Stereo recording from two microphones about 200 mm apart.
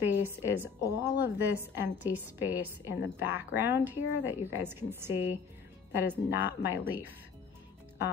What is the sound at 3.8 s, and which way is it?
A woman's voice, 10° right (ahead or behind).